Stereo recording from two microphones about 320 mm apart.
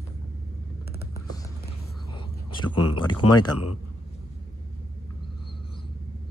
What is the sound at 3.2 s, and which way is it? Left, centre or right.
Speech, left.